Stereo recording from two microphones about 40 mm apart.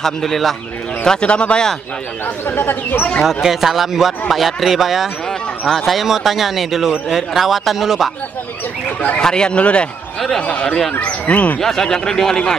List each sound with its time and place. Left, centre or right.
0.0 s a man's voice: centre
1.0 s speech: left
2.4 s speech: left
3.3 s speech: centre
9.2 s speech: left
11.6 s a man's voice: centre